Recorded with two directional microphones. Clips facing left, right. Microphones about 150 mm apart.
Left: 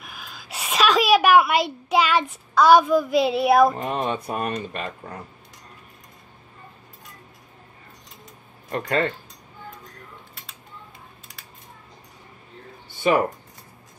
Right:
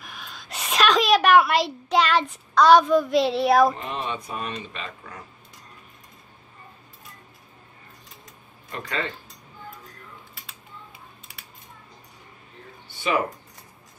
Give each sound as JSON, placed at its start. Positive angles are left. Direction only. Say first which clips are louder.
{"t": 0.0, "sound": "a woman's voice", "louder": "even", "side_deg": 5}
{"t": 3.7, "sound": "speech", "louder": "left 5 dB", "side_deg": 45}
{"t": 8.8, "sound": "speech", "louder": "left 7 dB", "side_deg": 55}
{"t": 13.0, "sound": "speech", "louder": "left 5 dB", "side_deg": 45}